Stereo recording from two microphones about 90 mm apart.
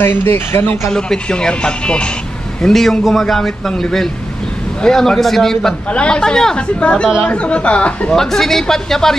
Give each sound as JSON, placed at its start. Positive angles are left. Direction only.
{"t": 0.0, "sound": "speech", "side_deg": 25}
{"t": 0.8, "sound": "a woman's voice", "side_deg": 10}